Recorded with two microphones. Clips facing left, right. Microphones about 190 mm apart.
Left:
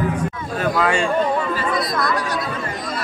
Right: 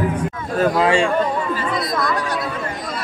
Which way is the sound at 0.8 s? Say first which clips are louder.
Right 2 dB; 30° right (ahead or behind).